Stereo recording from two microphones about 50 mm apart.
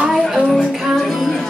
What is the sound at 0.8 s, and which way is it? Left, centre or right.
Speech, centre.